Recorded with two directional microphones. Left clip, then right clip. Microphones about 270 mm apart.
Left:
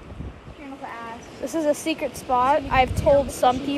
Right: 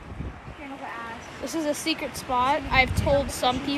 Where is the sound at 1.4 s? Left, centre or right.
Centre.